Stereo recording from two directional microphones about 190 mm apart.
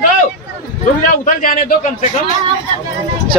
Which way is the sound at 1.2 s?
45° left (ahead or behind).